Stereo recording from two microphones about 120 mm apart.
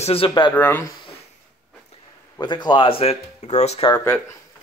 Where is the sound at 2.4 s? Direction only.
35° left (ahead or behind); by 3.9 s 65° left (ahead or behind).